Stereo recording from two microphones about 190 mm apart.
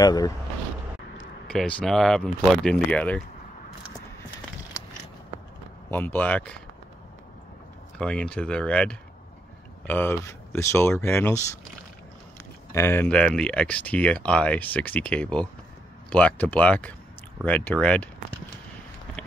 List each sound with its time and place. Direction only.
0.0 s speech: 20° left (ahead or behind)
1.5 s speech: 5° left (ahead or behind)
5.9 s speech: 10° left (ahead or behind)
8.0 s speech: 5° left (ahead or behind)
12.7 s speech: 10° left (ahead or behind)